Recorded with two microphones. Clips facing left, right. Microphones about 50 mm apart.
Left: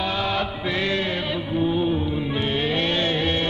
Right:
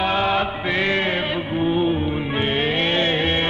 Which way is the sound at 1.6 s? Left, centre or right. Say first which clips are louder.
Right 2 dB; right.